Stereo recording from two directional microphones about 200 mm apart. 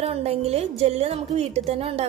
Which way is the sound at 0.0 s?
30° right (ahead or behind).